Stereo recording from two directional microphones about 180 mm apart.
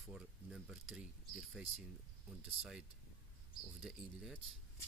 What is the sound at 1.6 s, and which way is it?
Speech, 5° right (ahead or behind).